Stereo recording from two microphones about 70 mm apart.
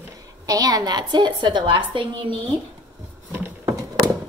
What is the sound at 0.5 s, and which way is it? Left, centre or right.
A woman's voice, right.